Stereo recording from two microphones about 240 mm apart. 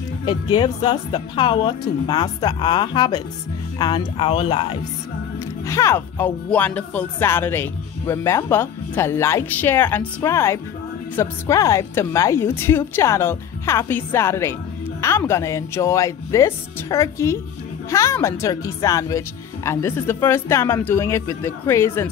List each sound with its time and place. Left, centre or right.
0.6 s speech: centre
5.7 s speech: centre